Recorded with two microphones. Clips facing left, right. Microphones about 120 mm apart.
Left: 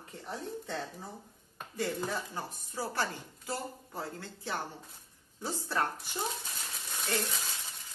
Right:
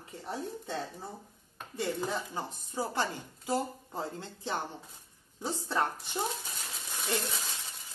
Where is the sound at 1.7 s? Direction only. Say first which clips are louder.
Right 1 dB; 25° right (ahead or behind).